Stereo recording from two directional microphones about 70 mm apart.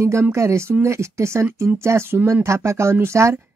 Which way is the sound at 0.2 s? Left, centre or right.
Right.